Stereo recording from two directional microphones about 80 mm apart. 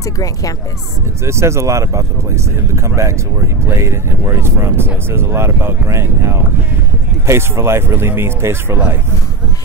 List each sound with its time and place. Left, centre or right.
0.0 s speech: left
1.2 s speech: right